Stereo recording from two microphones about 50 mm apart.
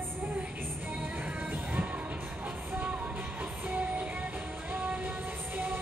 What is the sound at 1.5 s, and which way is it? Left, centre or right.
Music, right.